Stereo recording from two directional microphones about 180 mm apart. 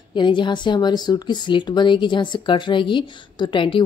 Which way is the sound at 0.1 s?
25° left (ahead or behind).